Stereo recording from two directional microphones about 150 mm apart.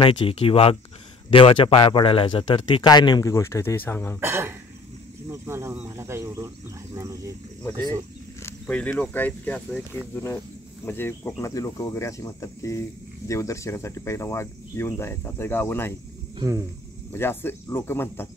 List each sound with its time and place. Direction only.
0.0 s speech: 35° left (ahead or behind); by 4.2 s 15° left (ahead or behind)
4.2 s speech: 15° right (ahead or behind)
8.4 s speech: 10° left (ahead or behind)
10.9 s speech: 15° left (ahead or behind)
16.3 s speech: 25° right (ahead or behind)
17.1 s speech: 15° left (ahead or behind)